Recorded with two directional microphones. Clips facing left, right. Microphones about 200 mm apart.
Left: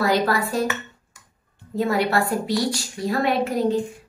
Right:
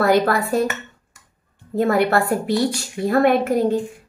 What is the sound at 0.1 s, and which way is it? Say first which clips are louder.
Speech: right 4 dB; 50° right (ahead or behind).